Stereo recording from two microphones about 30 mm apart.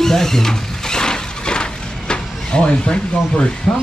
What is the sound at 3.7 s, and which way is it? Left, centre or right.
Speech, centre.